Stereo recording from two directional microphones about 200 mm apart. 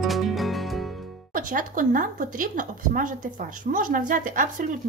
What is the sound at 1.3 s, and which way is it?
Speech, 40° right (ahead or behind).